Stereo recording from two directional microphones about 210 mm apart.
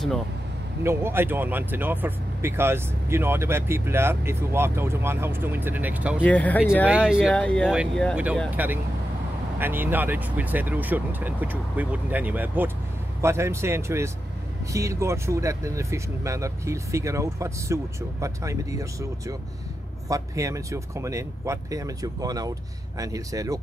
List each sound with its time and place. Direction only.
0.8 s speech: 10° right (ahead or behind)
6.2 s speech: 5° left (ahead or behind)
6.9 s speech: 5° right (ahead or behind)